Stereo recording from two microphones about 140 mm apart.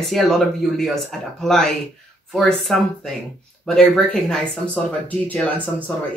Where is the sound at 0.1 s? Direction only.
Centre (ahead or behind).